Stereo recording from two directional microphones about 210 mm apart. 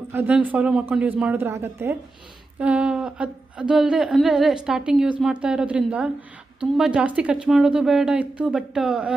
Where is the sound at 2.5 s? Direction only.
5° right (ahead or behind).